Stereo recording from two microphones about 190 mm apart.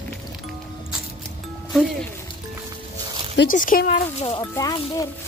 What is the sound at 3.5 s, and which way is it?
Speech, 45° left (ahead or behind).